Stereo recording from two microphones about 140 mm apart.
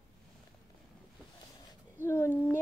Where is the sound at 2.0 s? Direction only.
15° left (ahead or behind).